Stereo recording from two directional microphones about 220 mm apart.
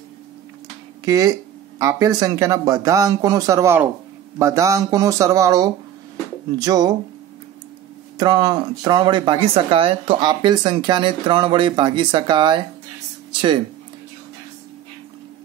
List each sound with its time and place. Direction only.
1.0 s speech: 15° right (ahead or behind)
8.2 s speech: 20° right (ahead or behind)